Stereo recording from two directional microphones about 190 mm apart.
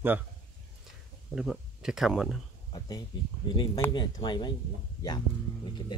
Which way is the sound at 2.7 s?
20° left (ahead or behind).